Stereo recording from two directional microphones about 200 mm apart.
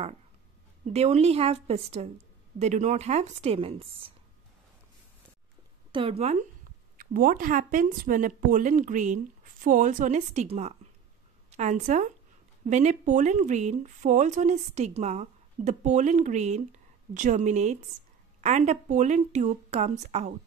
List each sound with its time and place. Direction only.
0.9 s speech: 30° right (ahead or behind)
5.9 s speech: 25° right (ahead or behind)
7.0 s speech: 45° right (ahead or behind)